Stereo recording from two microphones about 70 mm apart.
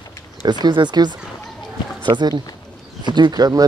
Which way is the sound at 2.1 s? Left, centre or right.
Right.